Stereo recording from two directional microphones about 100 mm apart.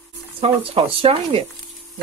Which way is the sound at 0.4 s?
70° right (ahead or behind).